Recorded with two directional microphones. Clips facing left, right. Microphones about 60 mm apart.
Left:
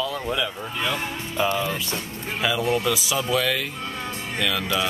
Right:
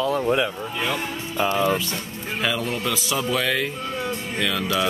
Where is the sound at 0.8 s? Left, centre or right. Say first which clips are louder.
Even; centre.